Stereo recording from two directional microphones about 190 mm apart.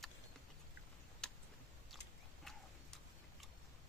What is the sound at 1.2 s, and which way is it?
Tick-tock, 5° left (ahead or behind).